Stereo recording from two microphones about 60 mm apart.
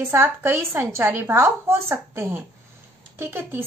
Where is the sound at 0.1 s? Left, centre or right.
Right.